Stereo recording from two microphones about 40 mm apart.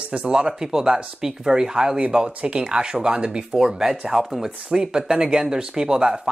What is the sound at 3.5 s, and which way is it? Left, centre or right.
Speech, centre.